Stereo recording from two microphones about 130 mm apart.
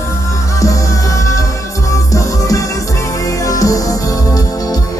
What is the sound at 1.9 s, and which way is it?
Music, 25° left (ahead or behind).